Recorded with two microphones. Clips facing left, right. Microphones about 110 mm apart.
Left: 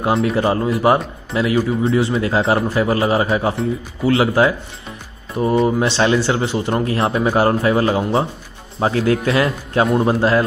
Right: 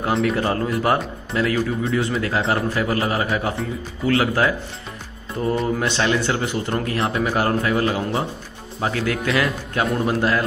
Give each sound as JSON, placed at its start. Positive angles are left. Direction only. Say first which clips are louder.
{"t": 0.0, "sound": "speech", "louder": "left 4 dB", "side_deg": 25}